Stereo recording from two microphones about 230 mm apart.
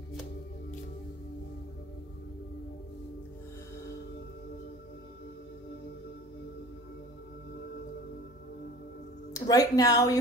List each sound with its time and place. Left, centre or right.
9.3 s speech: centre